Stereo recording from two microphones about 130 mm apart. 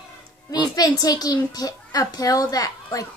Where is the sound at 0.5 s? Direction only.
30° left (ahead or behind).